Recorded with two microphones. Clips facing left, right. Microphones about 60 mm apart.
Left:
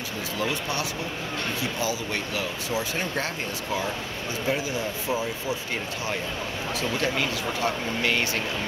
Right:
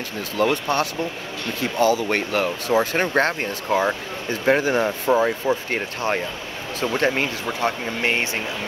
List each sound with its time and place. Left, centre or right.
0.4 s speech: right